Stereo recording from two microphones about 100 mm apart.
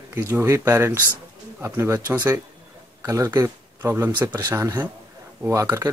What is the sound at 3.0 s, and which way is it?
Speech, 30° right (ahead or behind).